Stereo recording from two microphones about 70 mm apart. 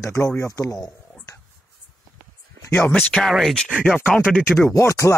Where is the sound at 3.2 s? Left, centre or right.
Centre.